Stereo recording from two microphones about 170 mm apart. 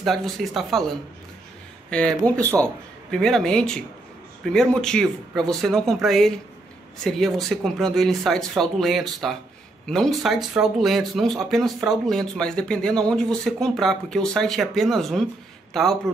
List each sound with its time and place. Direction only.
0.0 s a man's voice: centre (ahead or behind)